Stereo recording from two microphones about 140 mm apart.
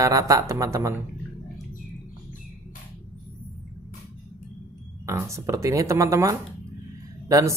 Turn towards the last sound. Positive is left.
turn(degrees=-25)  # may be behind; listen again after turning